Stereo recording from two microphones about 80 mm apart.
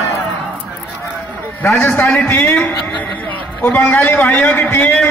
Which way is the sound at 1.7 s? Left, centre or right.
Left.